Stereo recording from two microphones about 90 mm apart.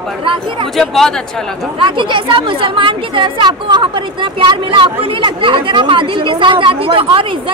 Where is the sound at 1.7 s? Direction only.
70° right (ahead or behind).